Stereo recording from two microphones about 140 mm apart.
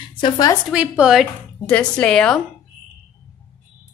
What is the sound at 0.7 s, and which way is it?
Speech, 5° right (ahead or behind).